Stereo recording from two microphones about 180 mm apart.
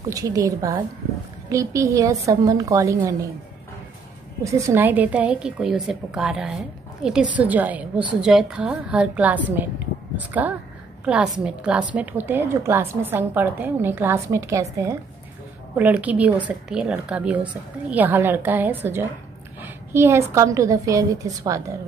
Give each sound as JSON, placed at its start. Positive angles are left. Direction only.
{"t": 0.1, "sound": "a woman's voice", "side_deg": -20}
{"t": 4.5, "sound": "a woman's voice", "side_deg": -15}